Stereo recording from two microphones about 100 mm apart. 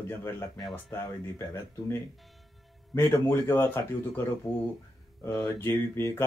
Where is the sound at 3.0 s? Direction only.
25° left (ahead or behind).